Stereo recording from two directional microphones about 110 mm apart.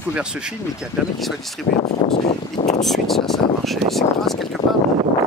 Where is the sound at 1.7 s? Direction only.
90° left.